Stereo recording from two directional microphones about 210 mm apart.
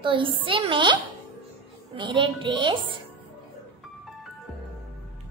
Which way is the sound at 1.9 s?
25° right (ahead or behind).